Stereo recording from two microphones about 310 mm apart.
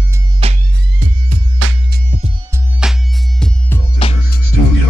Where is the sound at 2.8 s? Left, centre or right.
Centre.